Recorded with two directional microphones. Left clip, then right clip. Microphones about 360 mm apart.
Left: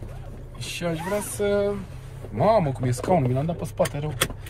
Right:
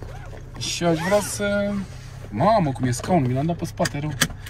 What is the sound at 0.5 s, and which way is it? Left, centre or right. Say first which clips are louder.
Speech: right 7 dB; centre.